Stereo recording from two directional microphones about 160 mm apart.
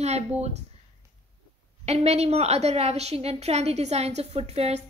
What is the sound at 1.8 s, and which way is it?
A woman's voice, 40° right (ahead or behind).